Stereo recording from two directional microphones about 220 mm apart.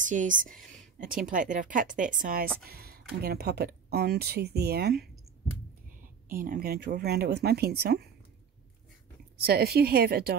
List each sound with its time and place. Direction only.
0.0 s speech: 35° right (ahead or behind)
6.2 s speech: 40° right (ahead or behind)
9.4 s speech: 45° right (ahead or behind)